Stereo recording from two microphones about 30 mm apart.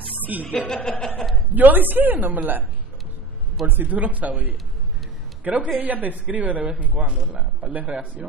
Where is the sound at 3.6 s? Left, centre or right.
Right.